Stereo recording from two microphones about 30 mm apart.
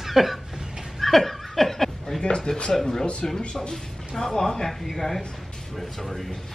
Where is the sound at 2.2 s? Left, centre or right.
Left.